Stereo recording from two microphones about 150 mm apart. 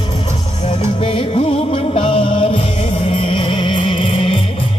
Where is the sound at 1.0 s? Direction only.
40° left (ahead or behind).